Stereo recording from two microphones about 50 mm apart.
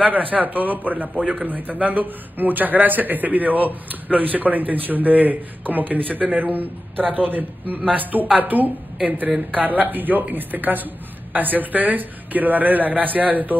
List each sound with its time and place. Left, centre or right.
0.0 s a man's voice: right